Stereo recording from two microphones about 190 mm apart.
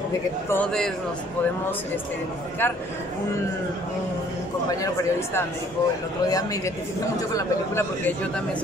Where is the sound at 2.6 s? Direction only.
10° left (ahead or behind).